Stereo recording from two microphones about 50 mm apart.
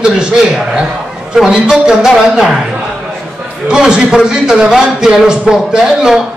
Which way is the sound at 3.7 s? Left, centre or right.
Centre.